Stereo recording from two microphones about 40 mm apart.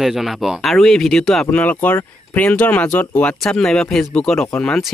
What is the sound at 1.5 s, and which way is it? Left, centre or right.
Speech, left.